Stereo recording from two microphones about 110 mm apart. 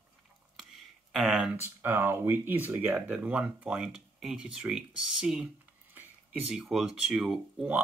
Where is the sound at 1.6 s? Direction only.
20° right (ahead or behind).